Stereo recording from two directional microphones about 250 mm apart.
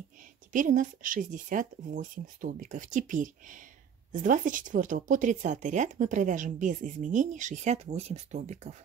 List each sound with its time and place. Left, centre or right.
0.5 s speech: right